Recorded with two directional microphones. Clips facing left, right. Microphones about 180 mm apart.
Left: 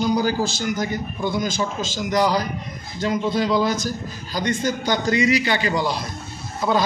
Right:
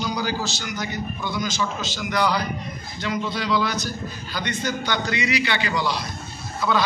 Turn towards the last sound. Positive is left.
turn(degrees=45)  # may be behind; listen again after turning